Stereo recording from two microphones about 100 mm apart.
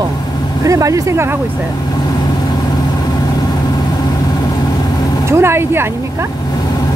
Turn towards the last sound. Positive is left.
turn(degrees=-25)  # may be behind; listen again after turning